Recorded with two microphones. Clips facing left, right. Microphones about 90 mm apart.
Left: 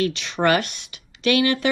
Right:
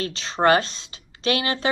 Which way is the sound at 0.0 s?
35° right (ahead or behind).